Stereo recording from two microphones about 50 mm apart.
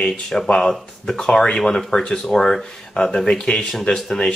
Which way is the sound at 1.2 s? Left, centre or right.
Centre.